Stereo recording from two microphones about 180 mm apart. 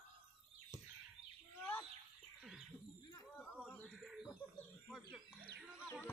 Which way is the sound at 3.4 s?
Centre (ahead or behind).